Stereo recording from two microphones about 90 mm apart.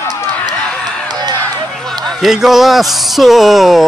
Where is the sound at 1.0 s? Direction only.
50° right (ahead or behind).